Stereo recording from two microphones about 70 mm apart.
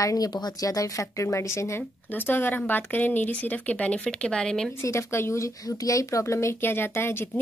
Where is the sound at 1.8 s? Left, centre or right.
Left; by 4.6 s centre.